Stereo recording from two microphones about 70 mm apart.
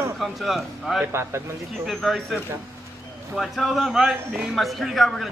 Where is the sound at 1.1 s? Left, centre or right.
Right.